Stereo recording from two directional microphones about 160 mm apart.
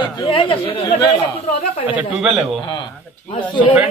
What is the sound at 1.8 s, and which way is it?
Speech, 10° right (ahead or behind).